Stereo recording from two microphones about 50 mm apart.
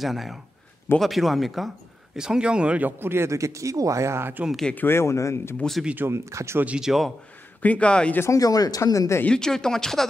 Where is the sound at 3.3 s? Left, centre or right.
Right.